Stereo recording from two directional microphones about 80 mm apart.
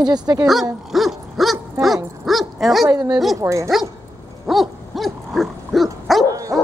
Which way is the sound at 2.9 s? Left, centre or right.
Right.